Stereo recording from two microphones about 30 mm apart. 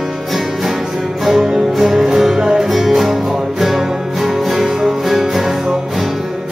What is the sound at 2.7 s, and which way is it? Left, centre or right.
Music, centre.